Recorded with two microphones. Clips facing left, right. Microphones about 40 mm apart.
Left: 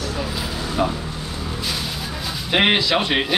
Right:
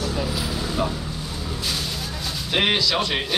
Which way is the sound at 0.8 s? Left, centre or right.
Centre.